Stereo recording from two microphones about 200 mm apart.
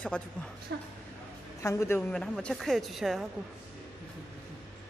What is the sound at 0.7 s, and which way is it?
Speech, 60° right (ahead or behind).